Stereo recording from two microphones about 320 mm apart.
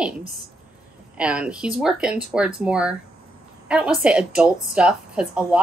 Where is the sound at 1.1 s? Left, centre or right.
Centre.